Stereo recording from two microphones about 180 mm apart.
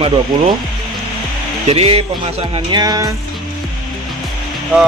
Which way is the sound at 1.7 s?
35° right (ahead or behind).